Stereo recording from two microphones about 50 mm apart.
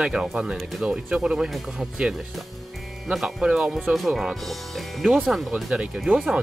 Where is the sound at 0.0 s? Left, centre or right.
Centre.